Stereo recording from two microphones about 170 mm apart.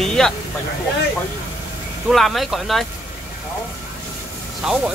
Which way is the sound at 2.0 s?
Centre (ahead or behind).